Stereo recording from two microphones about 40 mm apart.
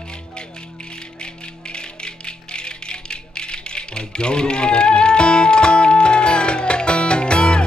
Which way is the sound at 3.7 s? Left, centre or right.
Left.